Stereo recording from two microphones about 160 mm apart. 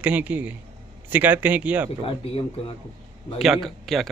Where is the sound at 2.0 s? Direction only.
35° left (ahead or behind).